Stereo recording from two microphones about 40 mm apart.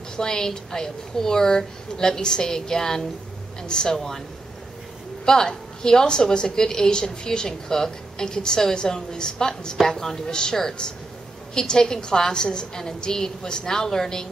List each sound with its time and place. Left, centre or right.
0.2 s a woman's voice: centre
5.2 s a woman's voice: centre